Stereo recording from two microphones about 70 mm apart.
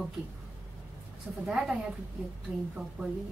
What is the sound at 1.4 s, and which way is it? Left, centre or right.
Speech, centre.